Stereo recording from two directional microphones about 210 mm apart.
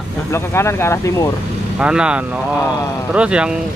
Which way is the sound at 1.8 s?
5° right (ahead or behind).